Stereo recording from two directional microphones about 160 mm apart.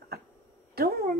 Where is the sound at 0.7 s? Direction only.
75° right (ahead or behind).